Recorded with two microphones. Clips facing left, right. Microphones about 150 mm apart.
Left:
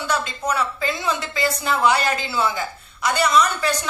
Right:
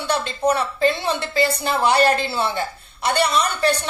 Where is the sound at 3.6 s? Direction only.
65° right (ahead or behind).